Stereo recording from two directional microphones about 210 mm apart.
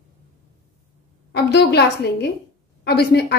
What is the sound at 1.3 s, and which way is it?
A woman's voice, 50° left (ahead or behind).